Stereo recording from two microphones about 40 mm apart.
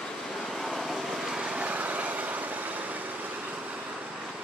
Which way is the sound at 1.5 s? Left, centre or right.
Right.